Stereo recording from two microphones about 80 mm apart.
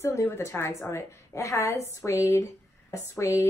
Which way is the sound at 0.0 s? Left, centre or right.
Left.